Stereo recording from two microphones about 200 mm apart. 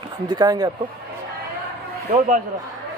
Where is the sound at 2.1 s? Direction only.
35° right (ahead or behind).